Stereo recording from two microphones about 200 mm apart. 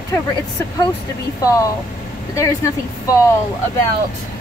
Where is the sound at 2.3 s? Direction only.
15° left (ahead or behind).